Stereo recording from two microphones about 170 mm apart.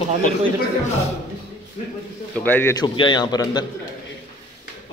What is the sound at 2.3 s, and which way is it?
Speech, 10° left (ahead or behind).